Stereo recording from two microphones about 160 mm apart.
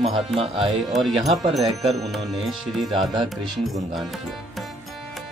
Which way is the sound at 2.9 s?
30° right (ahead or behind).